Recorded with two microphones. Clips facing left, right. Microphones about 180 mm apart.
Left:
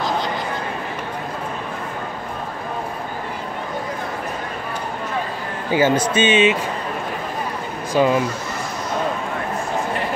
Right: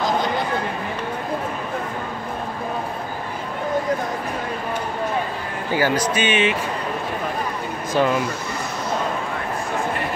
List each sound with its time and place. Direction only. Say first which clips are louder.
5.7 s speech: left 3 dB; 20° left (ahead or behind)
7.9 s speech: left 3 dB; 15° left (ahead or behind)